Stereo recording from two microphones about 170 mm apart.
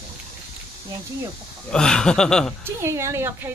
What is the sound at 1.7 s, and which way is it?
Speech, 5° left (ahead or behind).